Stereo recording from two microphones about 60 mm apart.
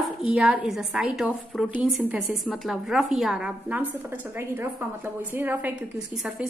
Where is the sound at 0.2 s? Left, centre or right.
Centre.